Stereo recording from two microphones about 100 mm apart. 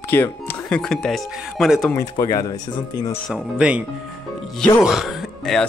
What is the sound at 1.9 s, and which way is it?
Speech, 30° left (ahead or behind).